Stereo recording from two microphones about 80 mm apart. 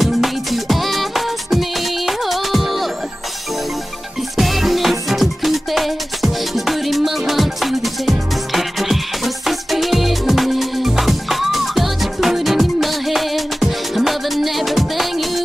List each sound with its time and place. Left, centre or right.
0.0 s music: centre
4.4 s music: centre